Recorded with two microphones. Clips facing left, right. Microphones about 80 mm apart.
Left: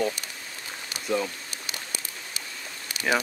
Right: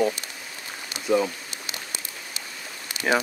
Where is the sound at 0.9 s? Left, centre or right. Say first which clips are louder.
Right 5 dB; centre.